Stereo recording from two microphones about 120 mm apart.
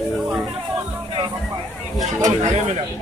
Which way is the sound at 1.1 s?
40° right (ahead or behind).